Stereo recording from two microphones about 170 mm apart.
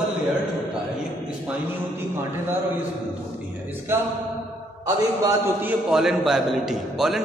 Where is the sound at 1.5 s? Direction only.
15° right (ahead or behind).